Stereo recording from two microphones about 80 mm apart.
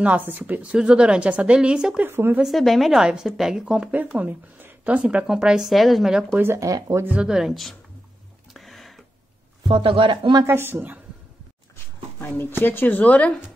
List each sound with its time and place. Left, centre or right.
0.0 s a woman's voice: right
2.0 s a woman's voice: right
2.4 s a woman's voice: centre
6.3 s a woman's voice: right
6.6 s speech: right
7.1 s a woman's voice: centre
8.5 s a sound: centre
9.7 s speech: right
10.4 s a woman's voice: right
11.7 s speech: left